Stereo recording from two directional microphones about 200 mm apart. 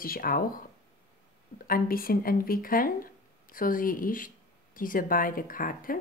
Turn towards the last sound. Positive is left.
turn(degrees=45)  # may be behind; listen again after turning